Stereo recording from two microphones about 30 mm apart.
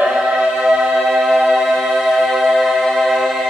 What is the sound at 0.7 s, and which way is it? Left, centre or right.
Music, centre.